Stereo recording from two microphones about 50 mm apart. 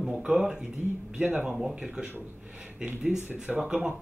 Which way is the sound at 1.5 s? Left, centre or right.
Centre.